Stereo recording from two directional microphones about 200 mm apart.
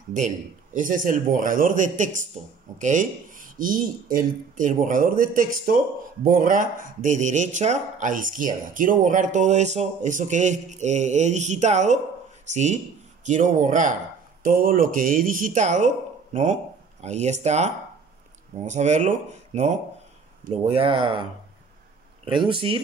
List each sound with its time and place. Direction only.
0.7 s speech: 40° right (ahead or behind)
17.0 s speech: 35° right (ahead or behind)
18.7 s speech: 35° right (ahead or behind)